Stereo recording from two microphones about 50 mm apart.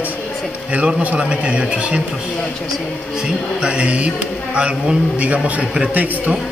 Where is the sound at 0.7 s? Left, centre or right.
Right.